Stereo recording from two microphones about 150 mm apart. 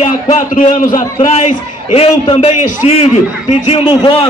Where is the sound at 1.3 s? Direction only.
45° left (ahead or behind).